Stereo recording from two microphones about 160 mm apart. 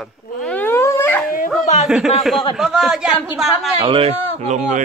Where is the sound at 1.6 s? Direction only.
45° left (ahead or behind).